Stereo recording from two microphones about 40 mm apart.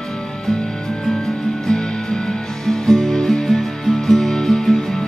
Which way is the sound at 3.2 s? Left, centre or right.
Centre.